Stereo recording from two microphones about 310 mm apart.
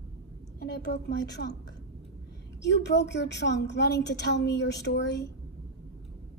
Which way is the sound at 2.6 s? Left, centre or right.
Left.